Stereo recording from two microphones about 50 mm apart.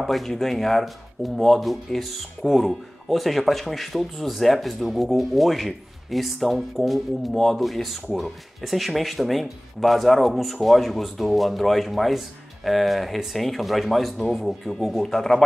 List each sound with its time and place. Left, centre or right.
0.0 s speech: centre